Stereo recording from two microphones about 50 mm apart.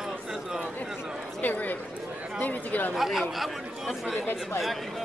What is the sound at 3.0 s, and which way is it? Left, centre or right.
Speech, centre.